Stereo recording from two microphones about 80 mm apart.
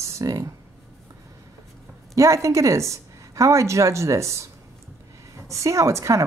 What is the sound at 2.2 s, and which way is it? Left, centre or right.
Speech, right.